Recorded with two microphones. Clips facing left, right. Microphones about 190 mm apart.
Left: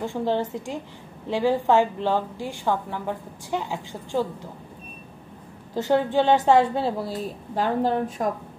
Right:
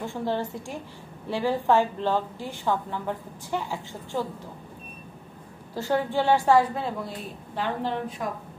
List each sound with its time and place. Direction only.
0.0 s a woman's voice: 15° left (ahead or behind)
5.8 s a woman's voice: 20° left (ahead or behind); by 8.3 s 45° left (ahead or behind)